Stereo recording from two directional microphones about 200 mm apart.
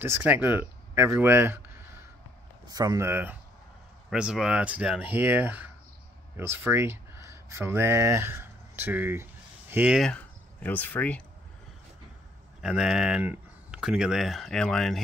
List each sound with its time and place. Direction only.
0.0 s speech: 10° right (ahead or behind); by 11.2 s 5° left (ahead or behind)
12.6 s speech: 5° right (ahead or behind)